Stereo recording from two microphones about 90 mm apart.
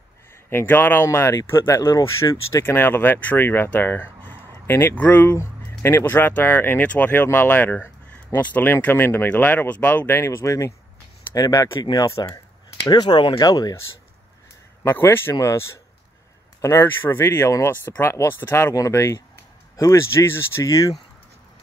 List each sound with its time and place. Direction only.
0.5 s speech: 25° left (ahead or behind); by 13.7 s 45° left (ahead or behind)
14.9 s speech: 25° left (ahead or behind)